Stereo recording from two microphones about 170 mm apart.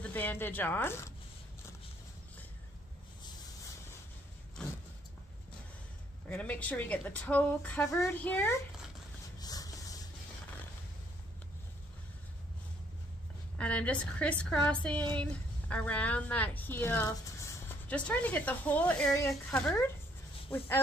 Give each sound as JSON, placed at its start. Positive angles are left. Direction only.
{"t": 0.0, "sound": "speech", "side_deg": 10}
{"t": 6.2, "sound": "a woman's voice", "side_deg": 10}
{"t": 9.4, "sound": "rub", "side_deg": 20}
{"t": 13.6, "sound": "a woman's voice", "side_deg": 5}